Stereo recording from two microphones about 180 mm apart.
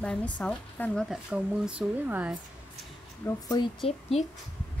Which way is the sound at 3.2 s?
25° left (ahead or behind).